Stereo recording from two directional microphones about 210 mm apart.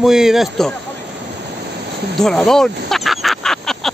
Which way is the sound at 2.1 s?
Centre (ahead or behind).